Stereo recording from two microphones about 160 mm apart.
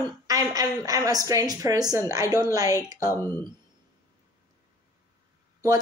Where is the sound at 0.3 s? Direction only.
20° right (ahead or behind).